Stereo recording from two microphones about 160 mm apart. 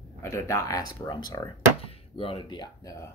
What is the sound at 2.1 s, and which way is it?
Speech, 35° left (ahead or behind).